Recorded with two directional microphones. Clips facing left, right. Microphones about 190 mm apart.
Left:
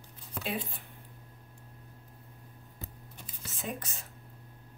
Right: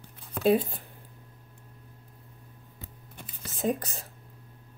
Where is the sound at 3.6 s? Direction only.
35° right (ahead or behind).